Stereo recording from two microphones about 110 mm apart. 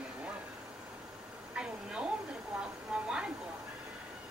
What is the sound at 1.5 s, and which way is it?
Speech, 10° right (ahead or behind).